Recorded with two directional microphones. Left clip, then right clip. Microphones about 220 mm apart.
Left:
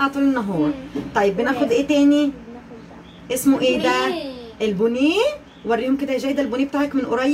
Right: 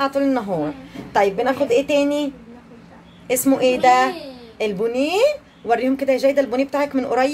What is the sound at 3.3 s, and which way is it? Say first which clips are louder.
A woman's voice: right 1 dB; 50° right (ahead or behind).